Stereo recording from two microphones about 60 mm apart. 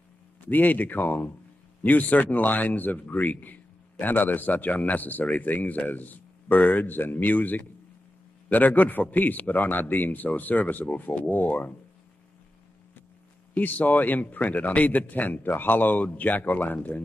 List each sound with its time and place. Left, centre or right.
0.5 s a man's voice: left
13.6 s a man's voice: left